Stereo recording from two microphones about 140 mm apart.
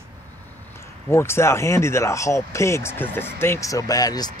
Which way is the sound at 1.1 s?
20° left (ahead or behind).